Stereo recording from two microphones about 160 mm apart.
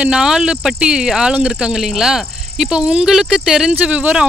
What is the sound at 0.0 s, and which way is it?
Speech, 5° right (ahead or behind).